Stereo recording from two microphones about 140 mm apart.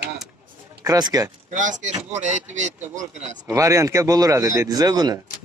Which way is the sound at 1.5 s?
65° right (ahead or behind).